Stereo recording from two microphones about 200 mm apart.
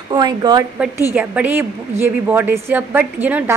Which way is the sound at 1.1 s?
10° right (ahead or behind).